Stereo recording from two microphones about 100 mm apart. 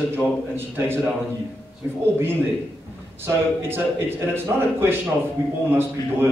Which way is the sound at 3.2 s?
25° right (ahead or behind).